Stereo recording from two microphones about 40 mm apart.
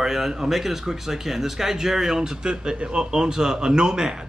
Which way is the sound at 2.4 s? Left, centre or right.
Right.